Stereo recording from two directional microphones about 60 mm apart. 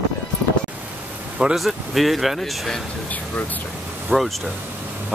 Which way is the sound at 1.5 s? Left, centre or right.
Centre.